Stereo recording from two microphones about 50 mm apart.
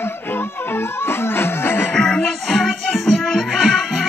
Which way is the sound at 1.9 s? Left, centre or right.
Centre.